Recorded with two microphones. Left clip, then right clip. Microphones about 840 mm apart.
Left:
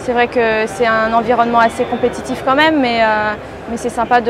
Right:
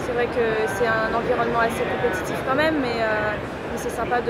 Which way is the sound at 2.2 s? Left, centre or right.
Left.